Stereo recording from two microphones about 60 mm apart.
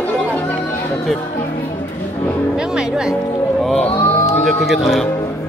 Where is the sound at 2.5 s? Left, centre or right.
Centre.